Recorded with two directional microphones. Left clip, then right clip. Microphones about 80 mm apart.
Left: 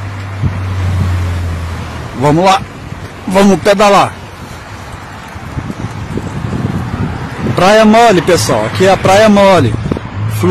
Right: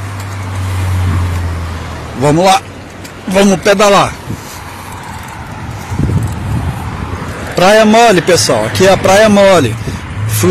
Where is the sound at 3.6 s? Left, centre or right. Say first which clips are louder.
Even; left.